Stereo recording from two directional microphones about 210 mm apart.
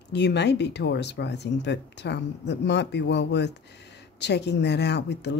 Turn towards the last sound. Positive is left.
turn(degrees=55)  # may be behind; listen again after turning